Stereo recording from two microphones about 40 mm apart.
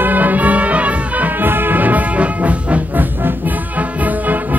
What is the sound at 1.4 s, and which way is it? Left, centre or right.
Music, right.